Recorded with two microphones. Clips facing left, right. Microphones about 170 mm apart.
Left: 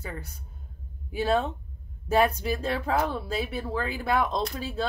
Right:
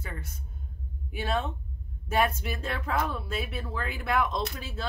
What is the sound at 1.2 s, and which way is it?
Speech, 35° left (ahead or behind).